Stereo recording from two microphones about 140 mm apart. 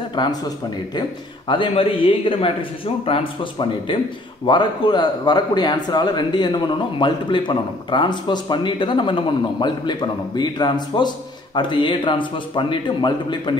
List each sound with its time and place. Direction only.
0.1 s speech: 35° left (ahead or behind)
1.5 s speech: 40° left (ahead or behind)